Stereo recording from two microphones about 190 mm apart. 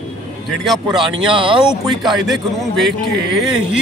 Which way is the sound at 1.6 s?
Centre (ahead or behind).